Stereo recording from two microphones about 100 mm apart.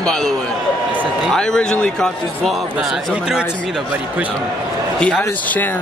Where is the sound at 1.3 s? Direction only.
5° left (ahead or behind).